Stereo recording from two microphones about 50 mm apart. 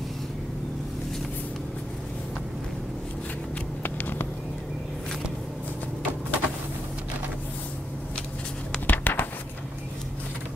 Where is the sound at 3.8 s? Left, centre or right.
Left.